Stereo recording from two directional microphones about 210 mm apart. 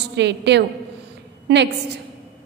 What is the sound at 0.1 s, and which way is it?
Speech, 55° right (ahead or behind).